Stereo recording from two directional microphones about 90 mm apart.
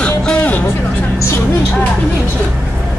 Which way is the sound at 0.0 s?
10° left (ahead or behind).